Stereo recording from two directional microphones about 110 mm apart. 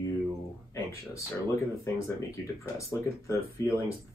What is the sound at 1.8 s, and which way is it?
Speech, 30° left (ahead or behind).